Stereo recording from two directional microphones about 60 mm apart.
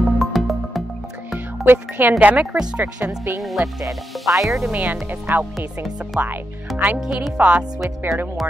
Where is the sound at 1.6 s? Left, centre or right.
Right.